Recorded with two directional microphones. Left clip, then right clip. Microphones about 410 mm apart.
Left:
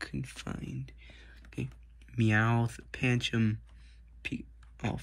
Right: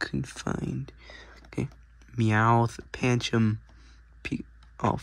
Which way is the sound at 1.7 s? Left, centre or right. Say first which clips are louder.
Right 4 dB; right.